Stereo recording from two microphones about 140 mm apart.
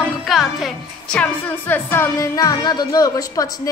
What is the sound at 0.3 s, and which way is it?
Music, centre (ahead or behind).